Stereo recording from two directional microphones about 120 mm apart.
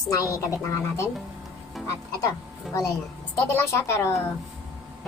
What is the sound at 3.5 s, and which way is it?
Speech, 25° left (ahead or behind).